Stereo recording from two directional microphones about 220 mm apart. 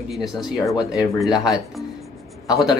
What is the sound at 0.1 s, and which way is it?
Speech, centre (ahead or behind).